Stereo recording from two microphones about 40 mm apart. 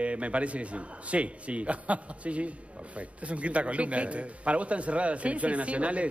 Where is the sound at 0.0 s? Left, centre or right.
Right.